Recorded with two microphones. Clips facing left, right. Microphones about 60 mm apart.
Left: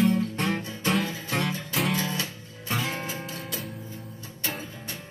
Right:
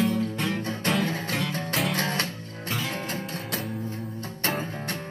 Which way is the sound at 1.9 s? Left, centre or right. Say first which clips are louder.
Right 2 dB; right.